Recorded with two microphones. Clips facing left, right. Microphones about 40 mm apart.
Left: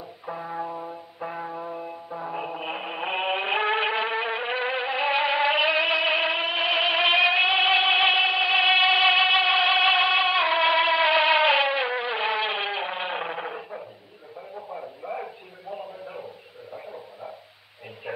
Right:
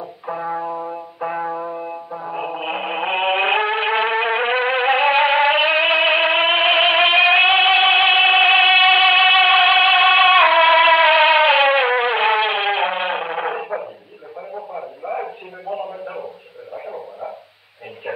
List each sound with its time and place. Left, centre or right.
0.3 s music: right
1.6 s music: right
2.4 s a sound: right
3.6 s vehicle: centre
3.9 s music: right
11.7 s music: right
13.2 s a sound: right
13.5 s dog: right
14.5 s radio: right
15.7 s a sound: right
16.7 s frog: right